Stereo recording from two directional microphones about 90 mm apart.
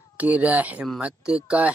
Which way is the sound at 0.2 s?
15° right (ahead or behind).